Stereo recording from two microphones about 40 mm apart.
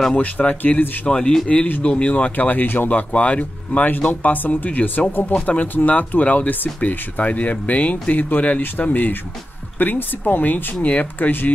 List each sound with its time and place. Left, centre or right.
0.1 s speech: left
1.0 s a man's voice: left
2.9 s speech: left
3.8 s speech: left
5.3 s a man's voice: left